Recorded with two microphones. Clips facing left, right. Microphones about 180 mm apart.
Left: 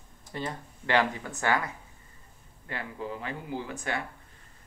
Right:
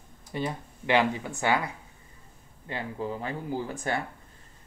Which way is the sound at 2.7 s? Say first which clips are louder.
Right 3 dB; 30° right (ahead or behind).